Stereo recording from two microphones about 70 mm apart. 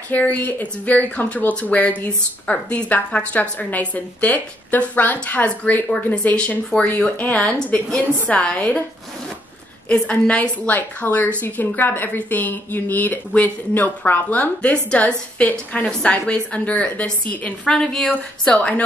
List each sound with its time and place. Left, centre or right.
0.1 s a woman's voice: left
10.0 s a woman's voice: centre
10.7 s speech: left
15.8 s a woman's voice: centre